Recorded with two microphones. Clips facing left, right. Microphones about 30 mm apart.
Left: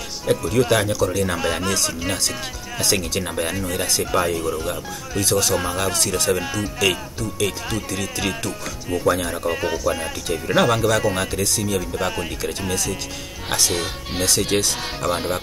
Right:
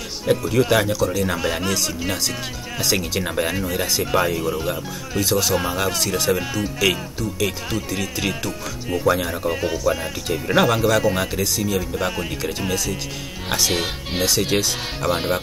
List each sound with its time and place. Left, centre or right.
0.2 s speech: centre
13.7 s speech: centre
14.3 s speech: centre
15.1 s speech: centre